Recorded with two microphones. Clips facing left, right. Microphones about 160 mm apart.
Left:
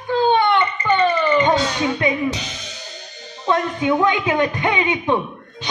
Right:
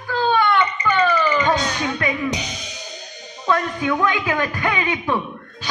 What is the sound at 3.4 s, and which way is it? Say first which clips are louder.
A man's voice: left 2 dB; 20° left (ahead or behind).